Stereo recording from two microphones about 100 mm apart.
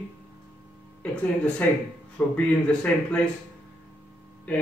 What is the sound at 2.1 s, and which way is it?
Speech, 15° left (ahead or behind).